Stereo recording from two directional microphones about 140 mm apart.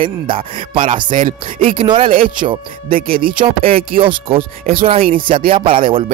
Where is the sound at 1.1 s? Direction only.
75° right (ahead or behind).